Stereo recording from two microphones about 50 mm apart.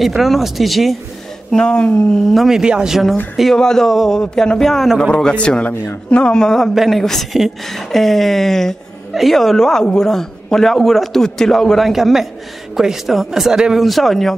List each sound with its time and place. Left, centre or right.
0.0 s speech: centre
1.5 s a man's voice: centre
2.2 s speech: centre
2.6 s speech: centre
3.5 s a man's voice: centre
5.0 s a man's voice: centre
6.7 s speech: centre
7.0 s a man's voice: centre
13.8 s speech: centre